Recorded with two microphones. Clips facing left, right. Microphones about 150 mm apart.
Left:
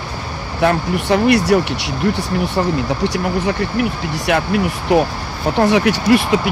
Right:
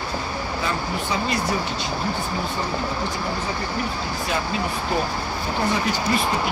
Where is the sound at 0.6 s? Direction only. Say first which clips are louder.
Left 13 dB; 75° left (ahead or behind).